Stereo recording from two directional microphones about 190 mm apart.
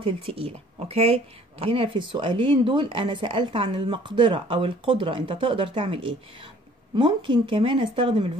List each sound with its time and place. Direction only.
0.0 s speech: 30° right (ahead or behind)